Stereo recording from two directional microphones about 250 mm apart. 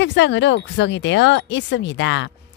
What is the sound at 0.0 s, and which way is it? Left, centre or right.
Speech, left.